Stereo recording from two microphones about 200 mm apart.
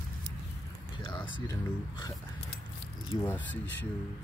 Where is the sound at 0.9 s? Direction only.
25° left (ahead or behind).